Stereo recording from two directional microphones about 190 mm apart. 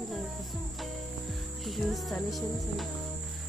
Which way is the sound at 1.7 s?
Centre (ahead or behind).